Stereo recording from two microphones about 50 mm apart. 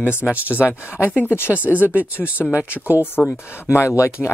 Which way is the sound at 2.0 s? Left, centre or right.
Right.